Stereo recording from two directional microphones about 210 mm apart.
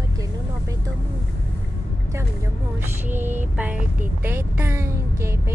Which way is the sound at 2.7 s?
10° right (ahead or behind).